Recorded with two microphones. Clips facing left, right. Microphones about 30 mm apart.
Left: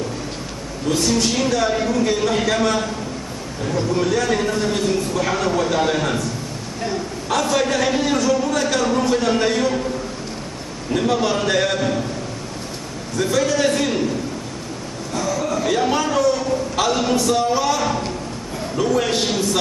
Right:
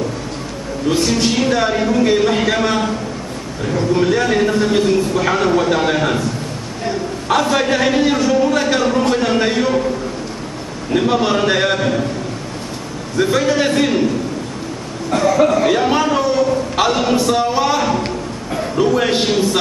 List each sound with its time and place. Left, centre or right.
0.8 s a man's voice: right
7.2 s a man's voice: right
10.9 s a man's voice: right
13.2 s a man's voice: right
15.0 s speech: right
15.6 s a man's voice: right